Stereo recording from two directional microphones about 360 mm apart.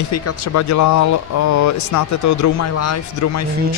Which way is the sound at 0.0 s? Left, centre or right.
Left.